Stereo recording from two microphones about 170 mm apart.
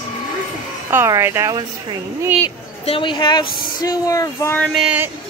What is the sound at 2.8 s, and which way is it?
Speech, 30° left (ahead or behind).